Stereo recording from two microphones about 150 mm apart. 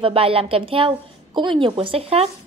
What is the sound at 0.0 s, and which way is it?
A woman's voice, 40° right (ahead or behind).